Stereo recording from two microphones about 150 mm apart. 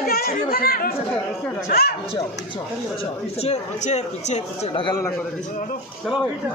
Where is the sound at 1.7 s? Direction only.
90° left.